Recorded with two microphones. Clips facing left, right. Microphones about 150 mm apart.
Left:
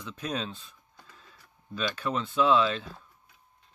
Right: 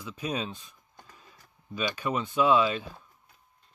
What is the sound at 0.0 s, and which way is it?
Speech, 10° right (ahead or behind).